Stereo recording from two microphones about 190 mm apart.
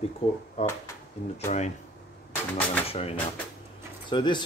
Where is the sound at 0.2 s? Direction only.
30° left (ahead or behind).